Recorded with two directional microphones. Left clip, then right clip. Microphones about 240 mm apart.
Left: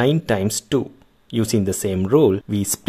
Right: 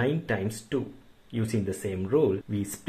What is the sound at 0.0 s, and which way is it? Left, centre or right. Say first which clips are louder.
Speech: left 9 dB; left.